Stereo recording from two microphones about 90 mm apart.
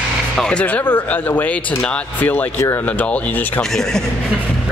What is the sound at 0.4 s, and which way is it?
Speech, 10° left (ahead or behind).